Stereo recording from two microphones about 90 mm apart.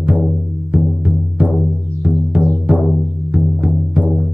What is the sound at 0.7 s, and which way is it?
Music, 15° right (ahead or behind).